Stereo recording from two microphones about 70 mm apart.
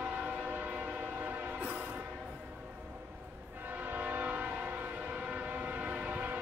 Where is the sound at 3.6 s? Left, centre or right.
Right.